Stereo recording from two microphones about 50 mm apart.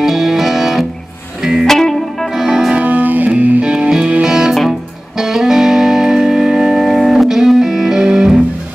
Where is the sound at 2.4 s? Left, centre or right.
Centre.